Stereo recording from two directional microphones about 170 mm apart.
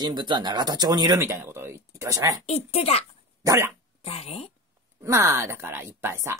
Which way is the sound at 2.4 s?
40° left (ahead or behind).